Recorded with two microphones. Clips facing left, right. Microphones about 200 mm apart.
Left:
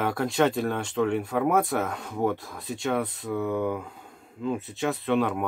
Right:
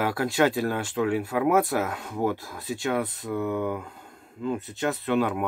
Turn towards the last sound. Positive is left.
turn(degrees=0)  # may be behind; listen again after turning